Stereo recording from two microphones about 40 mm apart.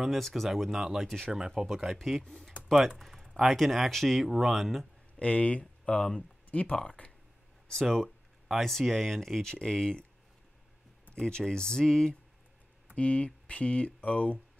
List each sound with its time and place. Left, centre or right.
0.2 s speech: centre
1.0 s speech: centre
1.5 s speech: centre
2.0 s speech: centre
2.7 s speech: centre
4.3 s speech: centre
5.2 s speech: left
8.6 s speech: centre
9.5 s speech: centre
11.1 s speech: centre
12.9 s speech: left